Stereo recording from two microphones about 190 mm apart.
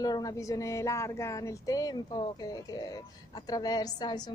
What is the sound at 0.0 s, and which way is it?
Speech, 20° left (ahead or behind).